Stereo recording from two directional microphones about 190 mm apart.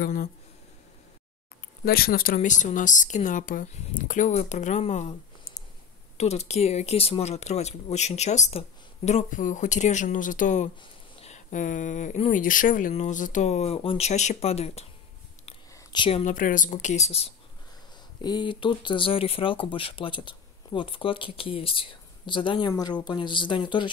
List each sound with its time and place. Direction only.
0.0 s speech: 45° left (ahead or behind)
1.9 s speech: 55° left (ahead or behind); by 16.3 s 30° left (ahead or behind)
16.3 s speech: 45° left (ahead or behind)
18.2 s speech: 25° left (ahead or behind)